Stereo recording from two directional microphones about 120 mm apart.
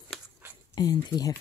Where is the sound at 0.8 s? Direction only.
35° left (ahead or behind).